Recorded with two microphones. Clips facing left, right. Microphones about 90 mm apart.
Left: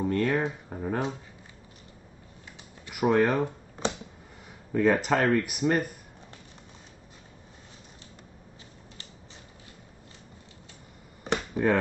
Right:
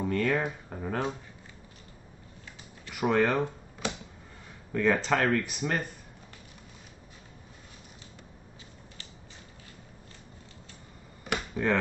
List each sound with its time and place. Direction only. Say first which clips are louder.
0.1 s speech: right 1 dB; 5° left (ahead or behind)
2.9 s speech: left 2 dB; 10° left (ahead or behind)
11.6 s speech: left 4 dB; 20° left (ahead or behind)